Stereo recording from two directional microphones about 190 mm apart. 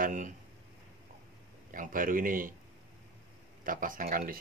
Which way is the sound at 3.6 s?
45° right (ahead or behind).